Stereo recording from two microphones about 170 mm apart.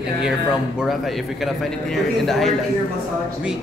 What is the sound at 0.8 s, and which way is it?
A man's voice, centre (ahead or behind).